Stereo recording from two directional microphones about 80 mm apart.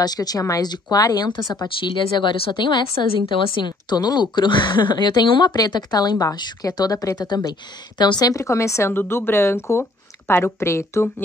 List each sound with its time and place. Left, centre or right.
0.0 s a woman's voice: left
2.1 s a woman's voice: left